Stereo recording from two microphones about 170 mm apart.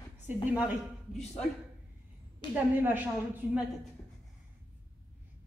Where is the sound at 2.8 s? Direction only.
10° right (ahead or behind).